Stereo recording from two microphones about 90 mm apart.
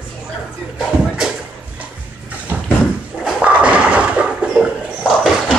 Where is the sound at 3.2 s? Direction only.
10° right (ahead or behind).